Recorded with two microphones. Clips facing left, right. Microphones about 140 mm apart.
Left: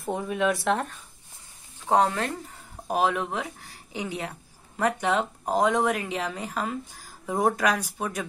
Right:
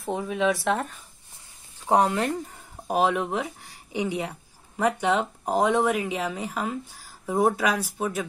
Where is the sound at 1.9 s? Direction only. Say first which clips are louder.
Right 1 dB; 15° right (ahead or behind).